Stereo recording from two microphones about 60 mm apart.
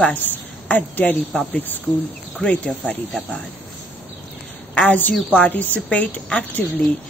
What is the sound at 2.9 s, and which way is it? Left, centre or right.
Speech, centre.